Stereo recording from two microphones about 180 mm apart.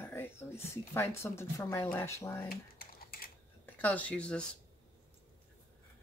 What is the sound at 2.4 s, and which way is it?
Typing, 55° left (ahead or behind).